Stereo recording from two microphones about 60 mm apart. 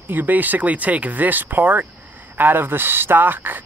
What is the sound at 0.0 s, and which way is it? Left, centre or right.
Speech, right.